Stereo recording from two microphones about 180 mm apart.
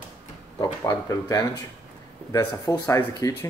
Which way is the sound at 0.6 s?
20° left (ahead or behind).